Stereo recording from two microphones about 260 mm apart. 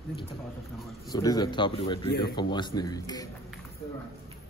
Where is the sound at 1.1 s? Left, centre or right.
Centre.